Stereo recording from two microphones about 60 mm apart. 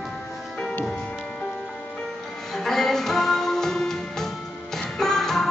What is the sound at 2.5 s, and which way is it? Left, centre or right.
Music, centre.